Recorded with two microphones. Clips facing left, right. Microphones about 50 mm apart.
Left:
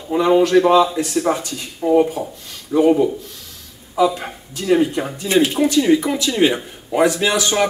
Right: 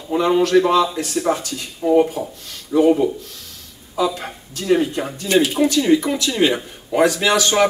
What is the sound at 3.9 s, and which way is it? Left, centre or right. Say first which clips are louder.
Speech: left 4 dB; centre.